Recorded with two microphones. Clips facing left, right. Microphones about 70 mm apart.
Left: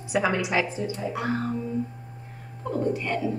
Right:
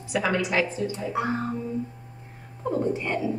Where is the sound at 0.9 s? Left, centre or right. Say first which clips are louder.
Right 2 dB; right.